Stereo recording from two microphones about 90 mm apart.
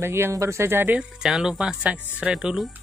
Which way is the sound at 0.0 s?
25° right (ahead or behind).